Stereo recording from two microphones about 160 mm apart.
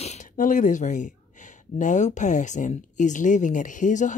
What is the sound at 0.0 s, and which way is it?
Speech, 50° left (ahead or behind).